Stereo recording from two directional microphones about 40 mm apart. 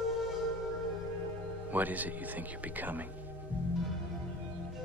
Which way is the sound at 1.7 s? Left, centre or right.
Right.